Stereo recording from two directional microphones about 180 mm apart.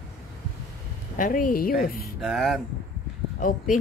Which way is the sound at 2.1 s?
Centre (ahead or behind).